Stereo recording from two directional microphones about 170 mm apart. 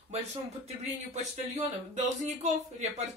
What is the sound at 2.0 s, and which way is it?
Speech, 40° right (ahead or behind).